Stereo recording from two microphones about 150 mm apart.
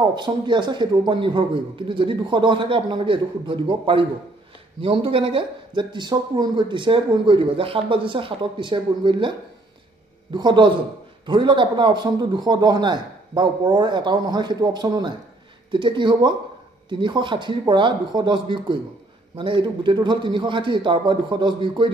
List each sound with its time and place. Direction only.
0.0 s speech: 30° right (ahead or behind)
10.3 s a man's voice: 30° right (ahead or behind)